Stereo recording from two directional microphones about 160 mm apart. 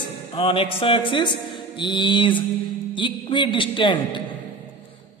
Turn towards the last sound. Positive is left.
turn(degrees=30)  # may be behind; listen again after turning